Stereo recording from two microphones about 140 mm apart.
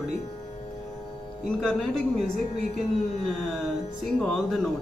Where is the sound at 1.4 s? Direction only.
5° left (ahead or behind).